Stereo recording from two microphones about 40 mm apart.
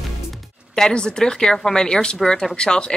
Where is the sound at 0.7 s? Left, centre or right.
Centre.